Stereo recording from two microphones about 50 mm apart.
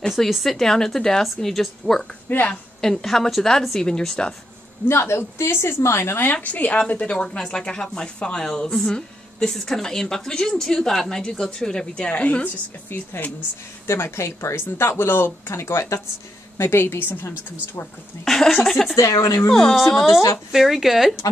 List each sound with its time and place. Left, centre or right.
0.2 s speech: centre
2.2 s speech: left
2.8 s speech: centre
4.8 s speech: left
6.3 s speech: left; by 12.1 s centre
12.1 s a woman's voice: left
12.9 s a woman's voice: left
13.8 s speech: left
15.5 s speech: left
16.5 s a woman's voice: left
18.2 s speech: centre
18.9 s speech: left
20.5 s speech: centre